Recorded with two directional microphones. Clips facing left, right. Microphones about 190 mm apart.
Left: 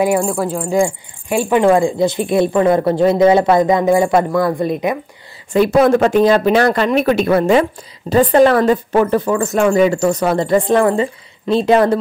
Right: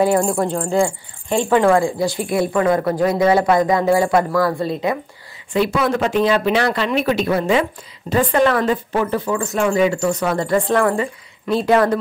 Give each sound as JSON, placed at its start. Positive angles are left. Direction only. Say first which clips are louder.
{"t": 0.2, "sound": "speech", "louder": "even", "side_deg": 0}
{"t": 0.7, "sound": "speech", "louder": "left 2 dB", "side_deg": 15}
{"t": 5.5, "sound": "speech", "louder": "left 7 dB", "side_deg": 45}
{"t": 8.1, "sound": "speech", "louder": "left 5 dB", "side_deg": 35}
{"t": 10.3, "sound": "speech", "louder": "left 4 dB", "side_deg": 20}